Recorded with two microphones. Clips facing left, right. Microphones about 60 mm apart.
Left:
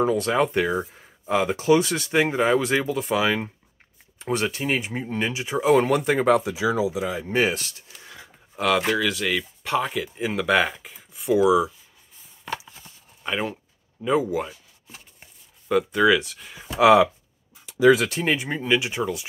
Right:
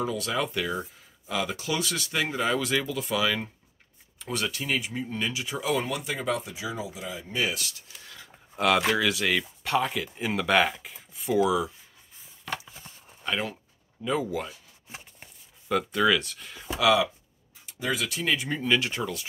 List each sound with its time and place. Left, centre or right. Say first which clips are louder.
0.0 s speech: left 8 dB; left
6.5 s speech: left 11 dB; left
7.2 s speech: left 6 dB; left
7.4 s speech: left 6 dB; left
8.0 s a sound: left 6 dB; left
8.5 s speech: left 2 dB; centre
13.2 s speech: left 3 dB; centre
15.7 s speech: left 5 dB; centre
18.0 s speech: left 4 dB; left; by 19.2 s centre